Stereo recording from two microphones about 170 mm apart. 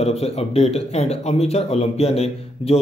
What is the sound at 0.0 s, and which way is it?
Speech, 35° left (ahead or behind).